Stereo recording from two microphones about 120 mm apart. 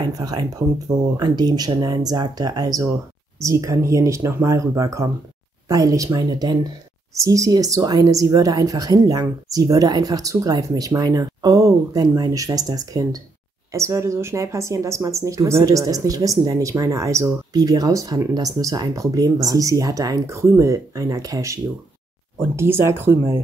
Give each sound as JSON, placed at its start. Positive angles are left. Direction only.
{"t": 0.0, "sound": "speech", "side_deg": -35}